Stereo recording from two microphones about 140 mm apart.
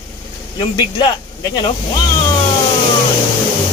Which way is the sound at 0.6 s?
30° left (ahead or behind).